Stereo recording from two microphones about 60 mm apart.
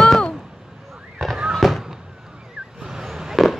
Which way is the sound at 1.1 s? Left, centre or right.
Centre.